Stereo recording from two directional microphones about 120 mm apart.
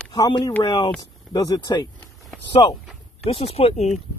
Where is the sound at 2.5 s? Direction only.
45° left (ahead or behind).